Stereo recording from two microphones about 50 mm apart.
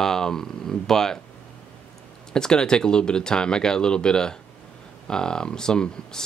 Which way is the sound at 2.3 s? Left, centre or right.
Centre.